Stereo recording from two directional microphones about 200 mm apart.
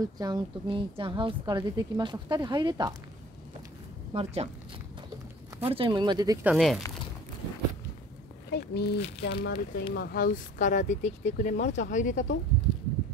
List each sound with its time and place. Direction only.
0.2 s a woman's voice: 20° right (ahead or behind)
4.1 s speech: 30° right (ahead or behind)
5.6 s a woman's voice: 25° right (ahead or behind)
6.5 s speech: centre (ahead or behind)
8.5 s speech: 55° left (ahead or behind); by 12.3 s 40° left (ahead or behind)